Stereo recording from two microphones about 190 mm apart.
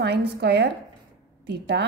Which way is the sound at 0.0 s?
60° right (ahead or behind).